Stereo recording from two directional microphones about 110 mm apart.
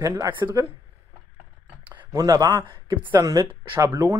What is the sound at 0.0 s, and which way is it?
Speech, 30° right (ahead or behind).